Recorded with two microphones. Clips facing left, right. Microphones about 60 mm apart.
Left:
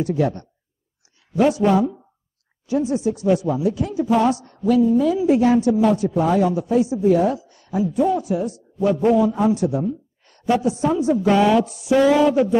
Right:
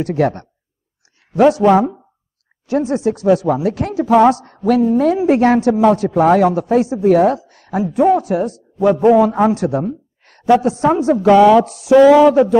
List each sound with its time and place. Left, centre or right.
0.0 s speech: right